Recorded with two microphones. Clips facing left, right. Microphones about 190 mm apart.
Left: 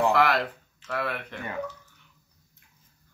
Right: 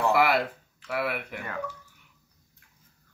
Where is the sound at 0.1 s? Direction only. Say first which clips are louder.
Even; 10° right (ahead or behind).